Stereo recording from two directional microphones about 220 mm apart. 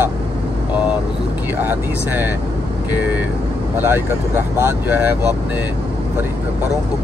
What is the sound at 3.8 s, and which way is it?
Speech, 10° right (ahead or behind).